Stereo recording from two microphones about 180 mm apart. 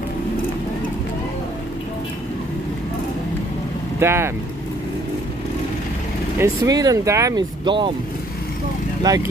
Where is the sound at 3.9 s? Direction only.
15° right (ahead or behind).